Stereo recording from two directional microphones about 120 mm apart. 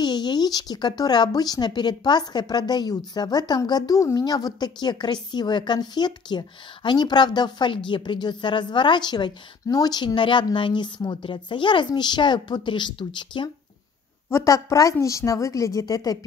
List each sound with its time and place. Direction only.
0.0 s speech: 35° left (ahead or behind)
14.3 s a woman's voice: 25° left (ahead or behind)